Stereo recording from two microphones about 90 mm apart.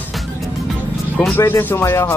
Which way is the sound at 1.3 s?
25° left (ahead or behind).